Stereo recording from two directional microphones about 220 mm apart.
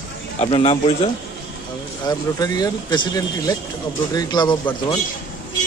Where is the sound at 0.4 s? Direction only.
25° left (ahead or behind).